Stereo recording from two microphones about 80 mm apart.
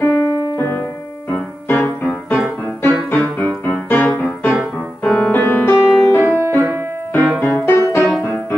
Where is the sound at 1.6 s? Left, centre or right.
Left.